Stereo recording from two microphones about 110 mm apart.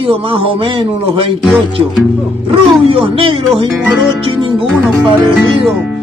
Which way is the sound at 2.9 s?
50° right (ahead or behind).